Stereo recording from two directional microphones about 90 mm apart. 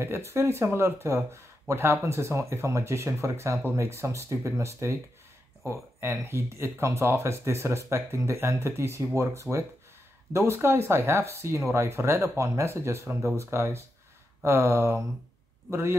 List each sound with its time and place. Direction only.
0.0 s speech: 30° right (ahead or behind)